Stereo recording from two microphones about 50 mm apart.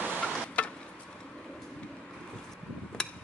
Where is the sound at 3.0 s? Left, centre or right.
Centre.